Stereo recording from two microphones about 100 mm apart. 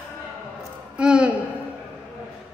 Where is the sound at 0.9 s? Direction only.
10° right (ahead or behind).